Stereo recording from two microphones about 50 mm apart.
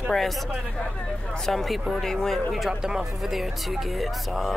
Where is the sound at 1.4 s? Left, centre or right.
Centre.